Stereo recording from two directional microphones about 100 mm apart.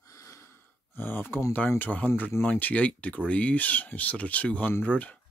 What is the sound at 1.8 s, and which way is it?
Speech, 15° left (ahead or behind).